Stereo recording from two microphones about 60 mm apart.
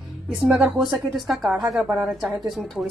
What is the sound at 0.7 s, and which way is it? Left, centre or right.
A woman's voice, centre.